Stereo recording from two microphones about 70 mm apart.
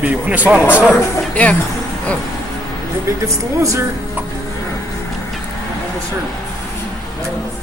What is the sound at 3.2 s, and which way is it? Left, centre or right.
Speech, right.